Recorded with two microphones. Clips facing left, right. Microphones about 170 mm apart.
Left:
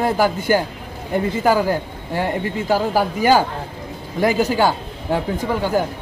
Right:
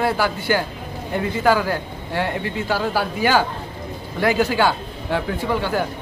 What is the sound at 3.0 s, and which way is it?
Speech, 15° left (ahead or behind).